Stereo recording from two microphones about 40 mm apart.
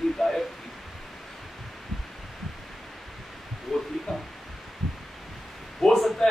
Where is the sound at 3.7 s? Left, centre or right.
Centre.